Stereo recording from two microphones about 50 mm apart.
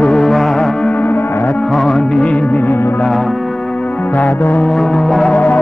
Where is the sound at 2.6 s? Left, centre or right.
Left.